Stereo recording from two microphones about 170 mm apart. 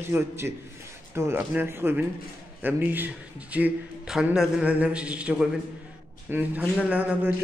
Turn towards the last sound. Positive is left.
turn(degrees=-10)  # may be behind; listen again after turning